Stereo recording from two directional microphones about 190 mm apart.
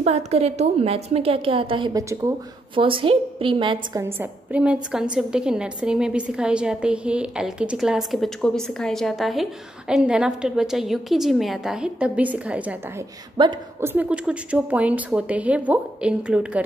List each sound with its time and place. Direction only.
0.0 s a woman's voice: 35° right (ahead or behind)
4.0 s a woman's voice: 10° right (ahead or behind)
13.4 s a woman's voice: 25° right (ahead or behind)
13.7 s a woman's voice: 10° right (ahead or behind)